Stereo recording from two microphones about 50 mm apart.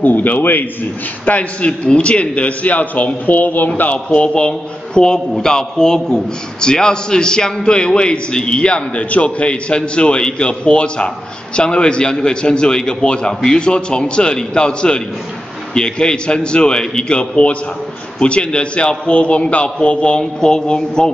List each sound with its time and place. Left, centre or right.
0.0 s a man's voice: left
1.2 s a man's voice: left